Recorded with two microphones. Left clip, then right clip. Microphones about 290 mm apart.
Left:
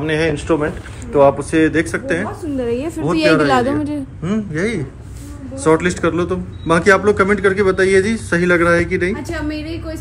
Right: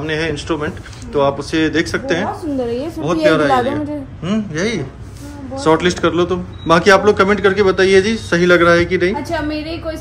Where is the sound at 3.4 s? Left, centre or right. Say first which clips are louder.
Right 1 dB; left.